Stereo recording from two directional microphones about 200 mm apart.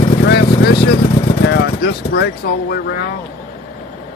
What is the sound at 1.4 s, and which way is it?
Speech, 55° left (ahead or behind).